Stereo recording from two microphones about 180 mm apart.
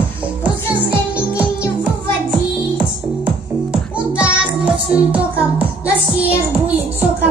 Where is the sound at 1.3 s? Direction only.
5° right (ahead or behind).